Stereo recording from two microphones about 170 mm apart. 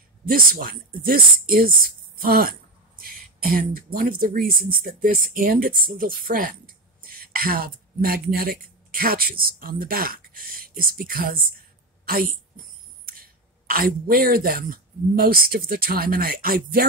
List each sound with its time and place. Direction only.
0.3 s a woman's voice: 55° right (ahead or behind)